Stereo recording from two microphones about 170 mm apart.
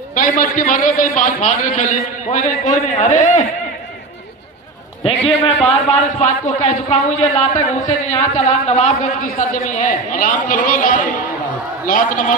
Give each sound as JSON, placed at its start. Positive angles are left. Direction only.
{"t": 0.1, "sound": "a man's voice", "side_deg": 55}
{"t": 5.6, "sound": "a man's voice", "side_deg": 40}
{"t": 9.3, "sound": "a man's voice", "side_deg": 55}